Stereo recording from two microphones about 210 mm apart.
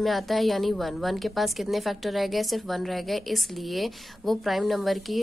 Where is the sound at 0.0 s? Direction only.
Centre (ahead or behind).